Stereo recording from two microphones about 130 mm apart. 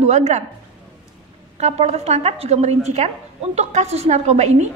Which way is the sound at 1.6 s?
60° right (ahead or behind).